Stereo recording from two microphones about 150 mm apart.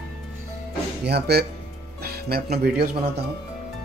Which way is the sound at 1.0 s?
90° right.